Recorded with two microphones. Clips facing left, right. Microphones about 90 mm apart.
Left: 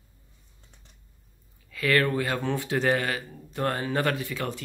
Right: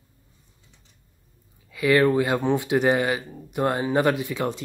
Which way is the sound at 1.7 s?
15° right (ahead or behind).